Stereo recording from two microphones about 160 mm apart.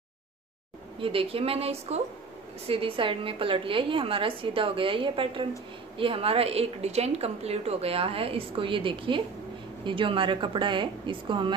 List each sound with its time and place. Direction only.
1.0 s a woman's voice: 35° right (ahead or behind)